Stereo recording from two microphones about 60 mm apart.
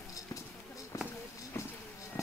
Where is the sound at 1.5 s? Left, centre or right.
Left.